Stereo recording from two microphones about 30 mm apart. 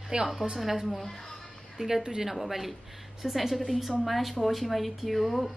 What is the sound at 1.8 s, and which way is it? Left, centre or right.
Speech, right.